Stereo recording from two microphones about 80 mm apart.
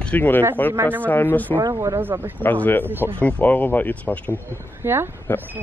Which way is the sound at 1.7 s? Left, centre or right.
Right.